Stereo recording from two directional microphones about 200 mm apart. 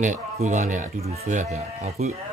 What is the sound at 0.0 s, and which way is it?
Speech, 40° right (ahead or behind).